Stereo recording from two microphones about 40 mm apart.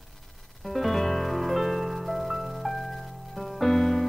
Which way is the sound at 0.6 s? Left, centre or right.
Centre.